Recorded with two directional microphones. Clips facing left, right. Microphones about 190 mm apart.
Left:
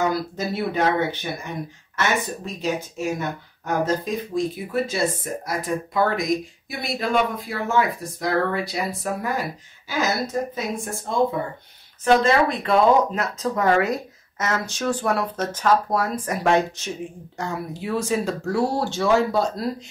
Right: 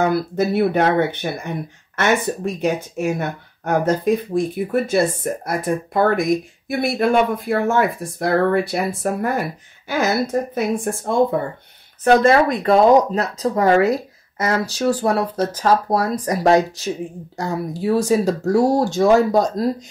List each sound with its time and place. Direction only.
0.0 s speech: 60° right (ahead or behind); by 19.7 s 40° right (ahead or behind)